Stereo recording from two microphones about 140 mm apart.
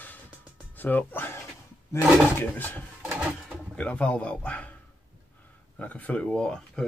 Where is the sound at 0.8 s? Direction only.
15° left (ahead or behind).